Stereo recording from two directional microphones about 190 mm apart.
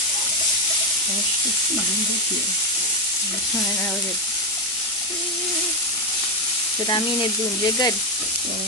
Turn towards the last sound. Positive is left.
turn(degrees=20)  # may be behind; listen again after turning